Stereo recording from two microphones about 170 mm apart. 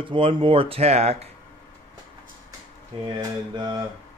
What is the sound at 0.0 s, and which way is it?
Speech, 30° right (ahead or behind).